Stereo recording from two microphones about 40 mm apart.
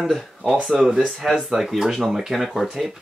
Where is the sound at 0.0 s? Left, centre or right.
Centre.